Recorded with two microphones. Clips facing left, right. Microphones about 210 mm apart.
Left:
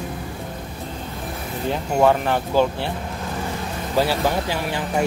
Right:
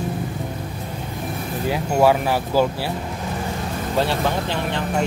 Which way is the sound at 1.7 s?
5° right (ahead or behind).